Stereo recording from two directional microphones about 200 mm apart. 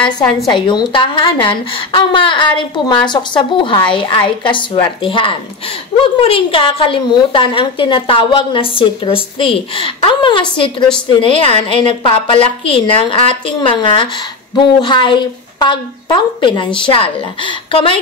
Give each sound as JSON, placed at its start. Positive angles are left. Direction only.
{"t": 0.5, "sound": "a woman's voice", "side_deg": 25}